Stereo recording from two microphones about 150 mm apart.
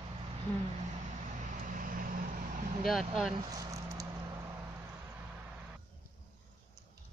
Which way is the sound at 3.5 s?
25° right (ahead or behind).